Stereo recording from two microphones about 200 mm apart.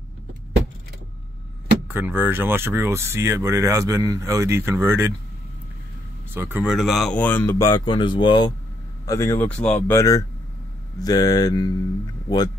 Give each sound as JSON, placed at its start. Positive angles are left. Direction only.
{"t": 1.9, "sound": "speech", "side_deg": -10}
{"t": 6.3, "sound": "speech", "side_deg": -10}